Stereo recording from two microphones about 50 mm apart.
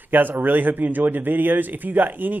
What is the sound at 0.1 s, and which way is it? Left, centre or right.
A man's voice, right.